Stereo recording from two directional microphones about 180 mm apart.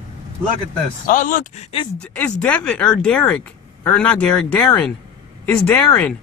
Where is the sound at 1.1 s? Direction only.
45° left (ahead or behind).